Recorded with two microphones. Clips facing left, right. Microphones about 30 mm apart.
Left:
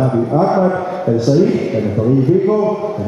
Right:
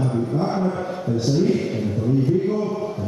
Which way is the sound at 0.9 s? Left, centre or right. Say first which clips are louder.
Left 9 dB; left.